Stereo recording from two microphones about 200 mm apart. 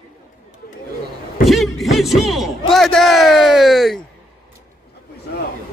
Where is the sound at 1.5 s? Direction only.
Centre (ahead or behind).